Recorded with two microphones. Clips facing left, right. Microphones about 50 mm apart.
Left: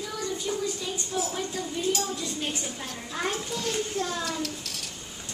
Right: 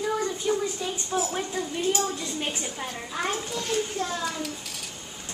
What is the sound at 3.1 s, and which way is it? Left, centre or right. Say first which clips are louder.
Speech: right 1 dB; centre.